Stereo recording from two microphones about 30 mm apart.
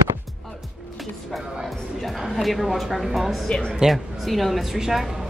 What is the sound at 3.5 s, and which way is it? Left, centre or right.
Speech, left.